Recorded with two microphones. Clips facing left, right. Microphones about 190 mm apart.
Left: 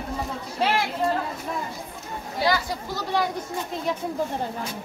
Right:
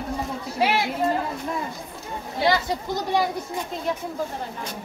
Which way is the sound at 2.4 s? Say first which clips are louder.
Right 2 dB; 25° right (ahead or behind).